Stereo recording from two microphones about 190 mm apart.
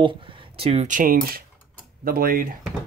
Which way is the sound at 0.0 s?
25° right (ahead or behind).